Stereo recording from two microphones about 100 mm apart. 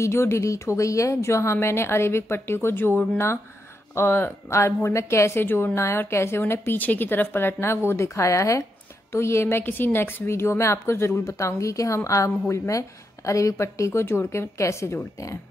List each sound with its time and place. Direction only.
0.0 s a woman's voice: 25° left (ahead or behind)